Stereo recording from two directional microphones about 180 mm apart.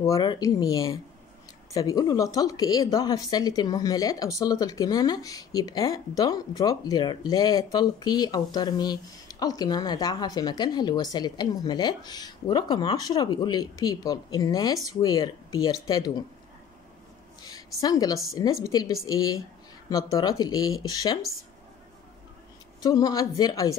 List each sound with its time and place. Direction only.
0.0 s speech: 20° left (ahead or behind)
17.7 s speech: 20° left (ahead or behind)
22.8 s speech: 20° left (ahead or behind)